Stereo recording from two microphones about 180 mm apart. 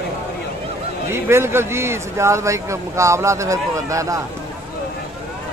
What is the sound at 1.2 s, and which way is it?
A man's voice, 15° right (ahead or behind).